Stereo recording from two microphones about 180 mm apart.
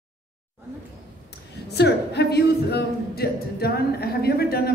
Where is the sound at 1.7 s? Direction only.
65° left (ahead or behind).